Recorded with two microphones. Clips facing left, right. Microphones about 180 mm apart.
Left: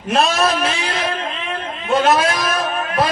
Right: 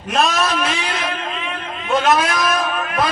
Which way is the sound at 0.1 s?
30° left (ahead or behind).